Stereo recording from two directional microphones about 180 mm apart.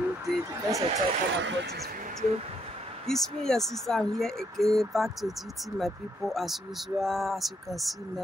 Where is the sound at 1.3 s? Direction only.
75° right (ahead or behind); by 2.1 s 60° right (ahead or behind).